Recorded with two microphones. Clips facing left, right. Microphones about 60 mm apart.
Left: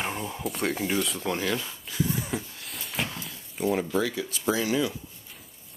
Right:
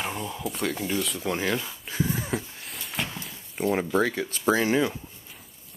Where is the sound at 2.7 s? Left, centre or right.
Centre.